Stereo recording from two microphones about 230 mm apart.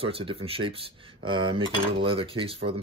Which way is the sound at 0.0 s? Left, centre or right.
Right.